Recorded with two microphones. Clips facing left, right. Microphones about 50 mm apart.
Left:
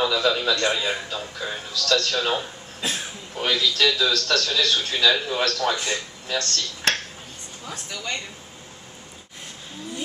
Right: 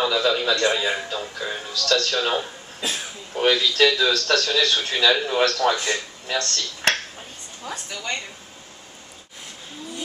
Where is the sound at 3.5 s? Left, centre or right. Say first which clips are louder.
Right 3 dB; right.